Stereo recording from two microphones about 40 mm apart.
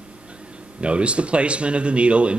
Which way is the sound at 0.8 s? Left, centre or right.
Right.